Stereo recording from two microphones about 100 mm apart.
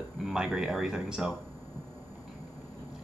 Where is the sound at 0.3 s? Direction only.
5° right (ahead or behind).